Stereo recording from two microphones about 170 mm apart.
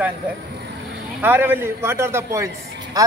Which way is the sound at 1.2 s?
10° right (ahead or behind).